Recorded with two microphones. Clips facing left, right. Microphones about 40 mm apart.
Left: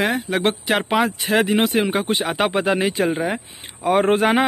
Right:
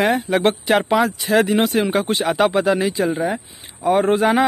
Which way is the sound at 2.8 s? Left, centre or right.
Left.